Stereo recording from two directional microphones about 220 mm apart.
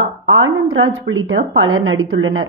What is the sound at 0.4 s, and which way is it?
Speech, 65° right (ahead or behind).